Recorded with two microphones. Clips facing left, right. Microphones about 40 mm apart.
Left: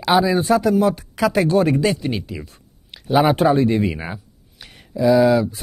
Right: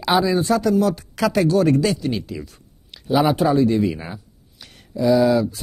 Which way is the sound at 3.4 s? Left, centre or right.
Left.